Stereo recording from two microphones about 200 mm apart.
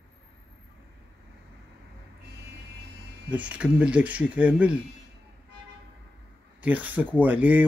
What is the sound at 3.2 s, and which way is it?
Speech, 5° right (ahead or behind).